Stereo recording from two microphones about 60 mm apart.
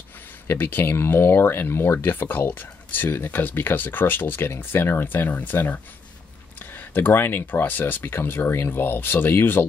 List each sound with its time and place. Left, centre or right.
0.5 s speech: left